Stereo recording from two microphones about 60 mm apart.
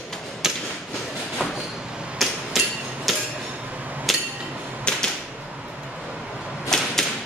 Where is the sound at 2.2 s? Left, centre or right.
Centre.